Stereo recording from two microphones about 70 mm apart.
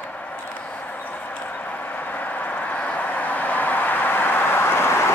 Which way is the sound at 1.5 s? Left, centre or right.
Left.